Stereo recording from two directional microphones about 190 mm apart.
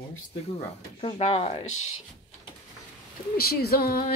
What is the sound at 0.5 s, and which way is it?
Speech, 35° left (ahead or behind).